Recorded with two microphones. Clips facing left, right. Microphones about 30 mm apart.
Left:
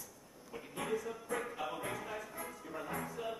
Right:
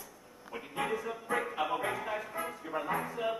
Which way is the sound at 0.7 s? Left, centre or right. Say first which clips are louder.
Right 4 dB; right.